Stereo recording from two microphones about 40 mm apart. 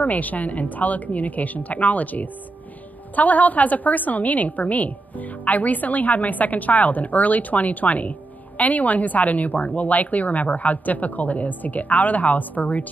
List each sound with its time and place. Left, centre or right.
0.0 s a woman's voice: left